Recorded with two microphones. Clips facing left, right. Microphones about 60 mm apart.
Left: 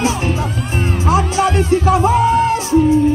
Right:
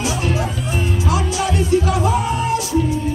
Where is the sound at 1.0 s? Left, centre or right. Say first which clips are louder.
Left 8 dB; left.